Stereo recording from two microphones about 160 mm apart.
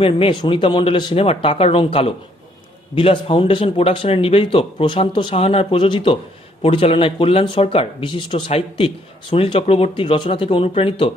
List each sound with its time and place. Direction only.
0.0 s speech: 35° left (ahead or behind)